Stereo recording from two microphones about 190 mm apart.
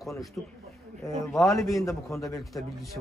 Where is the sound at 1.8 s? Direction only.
15° left (ahead or behind).